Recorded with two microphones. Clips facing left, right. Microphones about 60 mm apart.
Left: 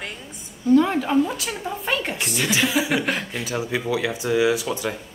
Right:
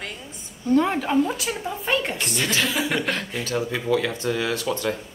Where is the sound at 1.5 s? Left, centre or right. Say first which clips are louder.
Right 1 dB; centre.